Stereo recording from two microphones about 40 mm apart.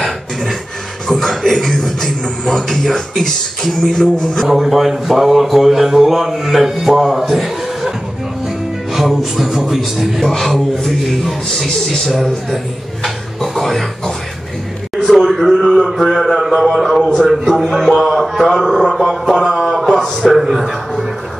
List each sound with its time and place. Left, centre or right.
1.0 s speech: centre
4.5 s speech: centre
8.9 s speech: centre
13.0 s a sound: centre
16.1 s speech: centre
16.3 s a sound: centre